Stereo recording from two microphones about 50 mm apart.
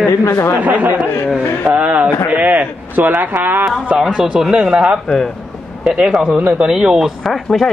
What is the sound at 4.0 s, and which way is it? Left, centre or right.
Speech, centre.